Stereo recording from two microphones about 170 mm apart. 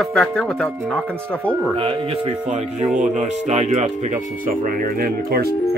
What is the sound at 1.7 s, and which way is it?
Speech, 35° right (ahead or behind).